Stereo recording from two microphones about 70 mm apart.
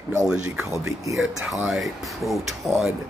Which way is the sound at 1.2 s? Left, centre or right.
Centre.